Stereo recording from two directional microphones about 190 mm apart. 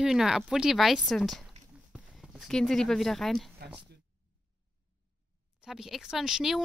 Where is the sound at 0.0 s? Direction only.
Centre (ahead or behind).